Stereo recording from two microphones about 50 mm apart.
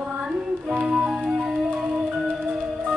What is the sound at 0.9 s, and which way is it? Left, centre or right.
Music, centre.